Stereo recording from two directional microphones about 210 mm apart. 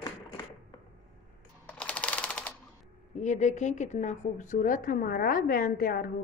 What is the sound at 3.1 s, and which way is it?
A woman's voice, 35° left (ahead or behind).